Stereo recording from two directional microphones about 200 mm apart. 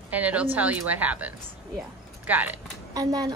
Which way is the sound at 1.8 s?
10° right (ahead or behind).